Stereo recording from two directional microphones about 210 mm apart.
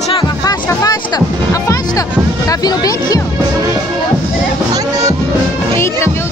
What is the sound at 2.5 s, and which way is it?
Speech, 20° left (ahead or behind).